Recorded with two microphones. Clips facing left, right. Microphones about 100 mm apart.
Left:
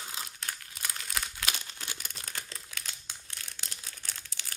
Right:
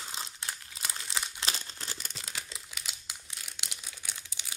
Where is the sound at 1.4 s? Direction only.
35° right (ahead or behind).